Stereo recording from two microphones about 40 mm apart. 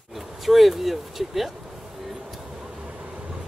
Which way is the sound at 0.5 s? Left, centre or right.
Centre.